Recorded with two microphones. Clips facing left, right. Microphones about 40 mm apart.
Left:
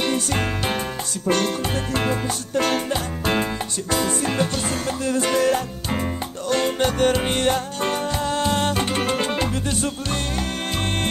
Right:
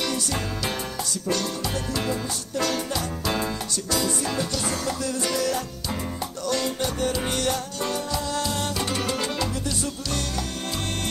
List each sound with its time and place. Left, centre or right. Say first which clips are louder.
0.0 s music: left 5 dB; left
2.0 s music: left 4 dB; left